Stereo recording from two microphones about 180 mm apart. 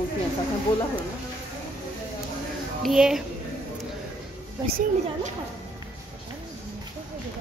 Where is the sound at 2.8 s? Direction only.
Centre (ahead or behind).